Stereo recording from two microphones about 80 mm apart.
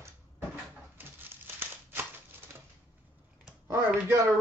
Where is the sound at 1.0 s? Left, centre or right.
Right.